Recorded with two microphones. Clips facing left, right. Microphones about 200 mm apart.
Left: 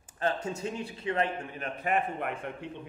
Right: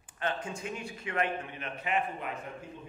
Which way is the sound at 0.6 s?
30° left (ahead or behind).